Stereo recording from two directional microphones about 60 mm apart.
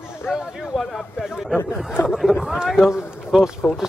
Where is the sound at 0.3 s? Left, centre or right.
Centre.